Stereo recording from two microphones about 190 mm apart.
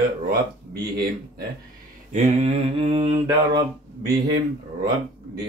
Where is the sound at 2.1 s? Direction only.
35° right (ahead or behind).